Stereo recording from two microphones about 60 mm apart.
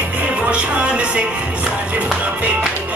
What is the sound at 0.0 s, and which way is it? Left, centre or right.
Music, right.